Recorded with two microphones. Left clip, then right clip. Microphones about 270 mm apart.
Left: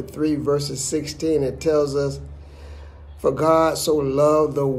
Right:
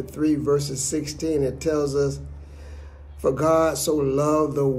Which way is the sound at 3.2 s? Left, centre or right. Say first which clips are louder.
Left 2 dB; centre.